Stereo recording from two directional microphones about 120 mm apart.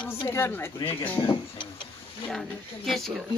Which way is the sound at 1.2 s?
40° left (ahead or behind).